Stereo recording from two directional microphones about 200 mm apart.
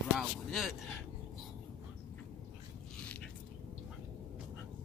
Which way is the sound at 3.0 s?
5° left (ahead or behind).